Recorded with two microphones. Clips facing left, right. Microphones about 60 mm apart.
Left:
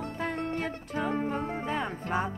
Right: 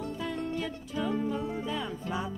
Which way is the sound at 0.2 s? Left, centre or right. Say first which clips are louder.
Left 3 dB; left.